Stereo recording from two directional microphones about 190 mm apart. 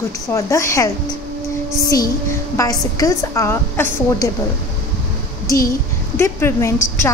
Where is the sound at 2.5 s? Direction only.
15° left (ahead or behind).